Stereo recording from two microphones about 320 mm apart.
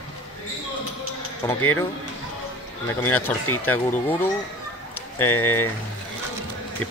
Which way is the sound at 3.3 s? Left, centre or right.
Centre.